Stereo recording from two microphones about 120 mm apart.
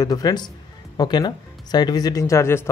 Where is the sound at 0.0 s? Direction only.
35° left (ahead or behind).